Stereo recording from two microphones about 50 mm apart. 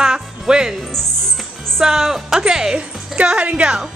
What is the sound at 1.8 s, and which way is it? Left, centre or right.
Speech, centre.